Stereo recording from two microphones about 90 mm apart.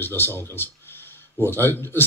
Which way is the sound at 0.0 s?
25° left (ahead or behind).